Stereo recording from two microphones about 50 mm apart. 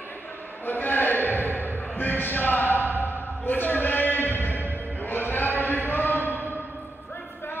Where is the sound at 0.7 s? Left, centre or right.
Left.